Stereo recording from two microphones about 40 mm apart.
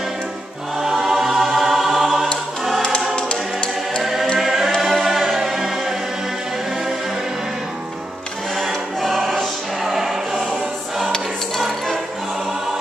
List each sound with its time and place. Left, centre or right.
0.8 s choir: centre
3.2 s choir: left
4.0 s choir: centre
4.4 s a capella: centre
5.0 s music: centre
8.5 s choir: centre
11.5 s music: centre